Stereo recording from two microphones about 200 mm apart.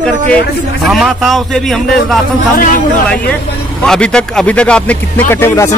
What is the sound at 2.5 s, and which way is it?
Speech, 45° left (ahead or behind).